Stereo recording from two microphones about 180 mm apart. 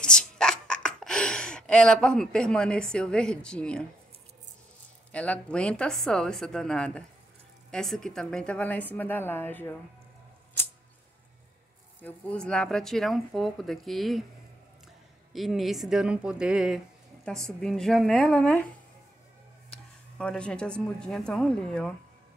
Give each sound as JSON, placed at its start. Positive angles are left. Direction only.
{"t": 0.0, "sound": "a sound", "side_deg": 5}
{"t": 5.1, "sound": "a woman's voice", "side_deg": 5}
{"t": 12.0, "sound": "speech", "side_deg": 5}
{"t": 15.3, "sound": "speech", "side_deg": 0}
{"t": 19.7, "sound": "speech", "side_deg": 5}